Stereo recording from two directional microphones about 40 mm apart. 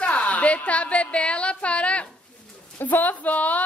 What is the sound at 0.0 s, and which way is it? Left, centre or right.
A woman's voice, left.